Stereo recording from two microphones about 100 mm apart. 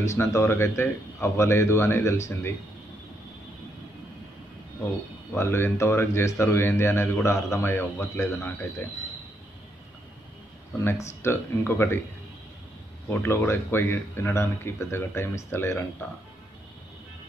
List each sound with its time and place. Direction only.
0.0 s speech: 30° left (ahead or behind)
5.3 s speech: 25° left (ahead or behind)
10.8 s speech: 25° left (ahead or behind)
13.1 s speech: 25° left (ahead or behind)